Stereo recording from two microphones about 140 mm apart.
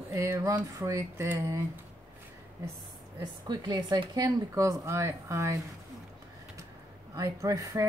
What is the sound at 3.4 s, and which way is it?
Speech, 30° right (ahead or behind).